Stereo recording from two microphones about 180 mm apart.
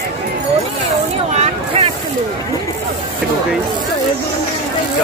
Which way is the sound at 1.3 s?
35° right (ahead or behind).